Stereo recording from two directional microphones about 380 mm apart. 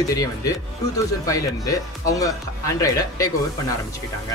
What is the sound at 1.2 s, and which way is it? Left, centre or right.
Speech, centre.